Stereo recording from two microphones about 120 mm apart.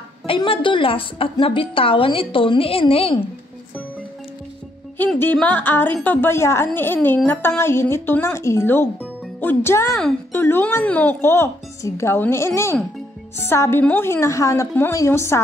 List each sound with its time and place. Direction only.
0.3 s a woman's voice: 45° left (ahead or behind)
4.9 s music: 15° left (ahead or behind)
6.0 s a woman's voice: 20° left (ahead or behind)